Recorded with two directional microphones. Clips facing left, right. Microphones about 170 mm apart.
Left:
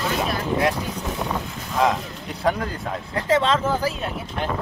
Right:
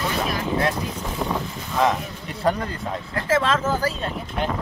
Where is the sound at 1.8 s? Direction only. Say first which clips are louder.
Even; centre (ahead or behind).